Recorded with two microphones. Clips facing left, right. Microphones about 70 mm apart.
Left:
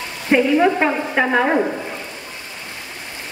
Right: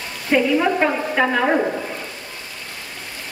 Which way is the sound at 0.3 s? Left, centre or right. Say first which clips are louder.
Left 2 dB; centre.